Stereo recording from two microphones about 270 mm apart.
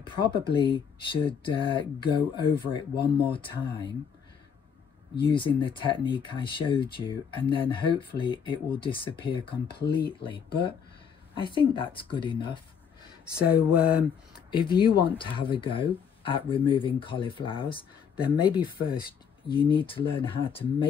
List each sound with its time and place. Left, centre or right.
0.0 s speech: centre
5.2 s speech: centre
13.2 s a sound: centre
14.5 s speech: centre
18.2 s a sound: centre
19.4 s speech: centre